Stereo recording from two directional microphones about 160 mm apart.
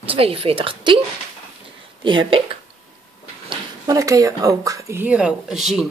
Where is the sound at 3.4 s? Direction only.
25° right (ahead or behind).